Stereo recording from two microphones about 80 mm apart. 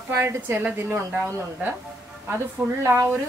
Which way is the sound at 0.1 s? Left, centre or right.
Right.